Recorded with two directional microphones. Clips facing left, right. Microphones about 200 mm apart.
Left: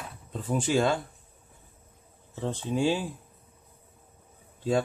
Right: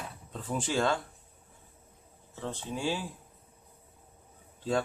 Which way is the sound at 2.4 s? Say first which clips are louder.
Left 8 dB; 20° left (ahead or behind).